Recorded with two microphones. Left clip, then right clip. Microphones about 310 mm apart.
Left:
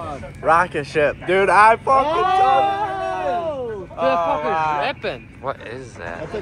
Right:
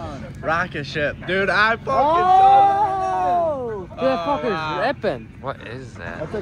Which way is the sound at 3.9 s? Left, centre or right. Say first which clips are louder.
Left 2 dB; left.